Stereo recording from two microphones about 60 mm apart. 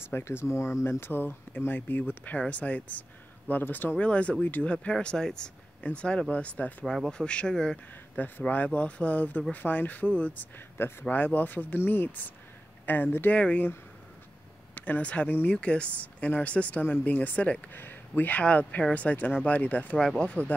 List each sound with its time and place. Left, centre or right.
0.1 s speech: left
2.5 s speech: left
4.0 s speech: left
4.8 s speech: centre
8.2 s speech: left
10.8 s speech: left
13.4 s speech: centre
14.8 s speech: left